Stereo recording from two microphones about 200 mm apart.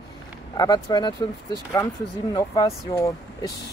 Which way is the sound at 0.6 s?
20° left (ahead or behind).